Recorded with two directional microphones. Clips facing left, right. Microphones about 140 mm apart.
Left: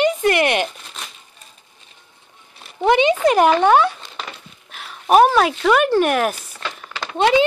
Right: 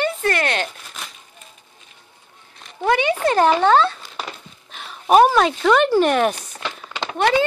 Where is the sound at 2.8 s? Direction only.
20° left (ahead or behind).